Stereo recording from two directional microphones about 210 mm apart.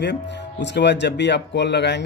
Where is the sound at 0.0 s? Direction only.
55° left (ahead or behind).